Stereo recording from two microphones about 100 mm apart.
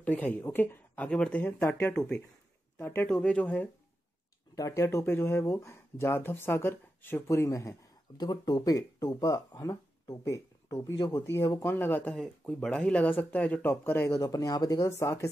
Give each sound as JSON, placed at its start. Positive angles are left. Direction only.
{"t": 0.0, "sound": "speech", "side_deg": 15}
{"t": 2.0, "sound": "speech", "side_deg": 10}
{"t": 4.6, "sound": "speech", "side_deg": 30}
{"t": 8.2, "sound": "speech", "side_deg": 45}
{"t": 11.7, "sound": "speech", "side_deg": 20}
{"t": 14.9, "sound": "speech", "side_deg": 25}